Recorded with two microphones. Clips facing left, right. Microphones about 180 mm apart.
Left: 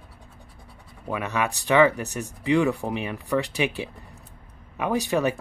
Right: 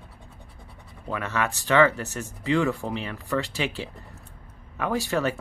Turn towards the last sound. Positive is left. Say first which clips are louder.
# left 2 dB
turn(degrees=15)  # may be behind; listen again after turning